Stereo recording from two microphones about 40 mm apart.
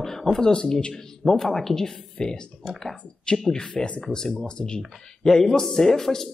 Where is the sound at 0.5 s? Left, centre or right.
Left.